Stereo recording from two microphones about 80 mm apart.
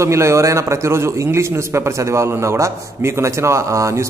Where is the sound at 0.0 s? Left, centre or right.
Right.